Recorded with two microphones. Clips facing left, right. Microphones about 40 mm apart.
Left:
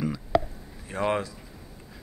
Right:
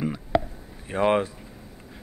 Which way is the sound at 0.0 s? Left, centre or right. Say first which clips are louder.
Right 1 dB; right.